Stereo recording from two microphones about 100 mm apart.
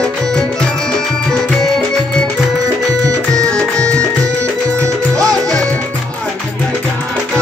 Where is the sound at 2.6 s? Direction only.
35° right (ahead or behind).